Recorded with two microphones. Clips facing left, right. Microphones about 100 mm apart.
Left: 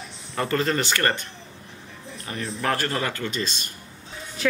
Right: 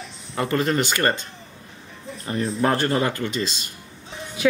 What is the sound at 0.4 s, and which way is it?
Speech, 15° right (ahead or behind).